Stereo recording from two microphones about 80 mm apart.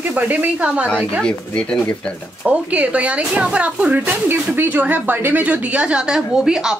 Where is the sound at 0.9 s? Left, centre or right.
Centre.